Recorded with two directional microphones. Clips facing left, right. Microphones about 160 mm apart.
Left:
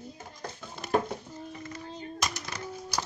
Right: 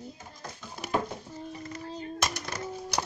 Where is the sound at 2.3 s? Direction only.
60° right (ahead or behind).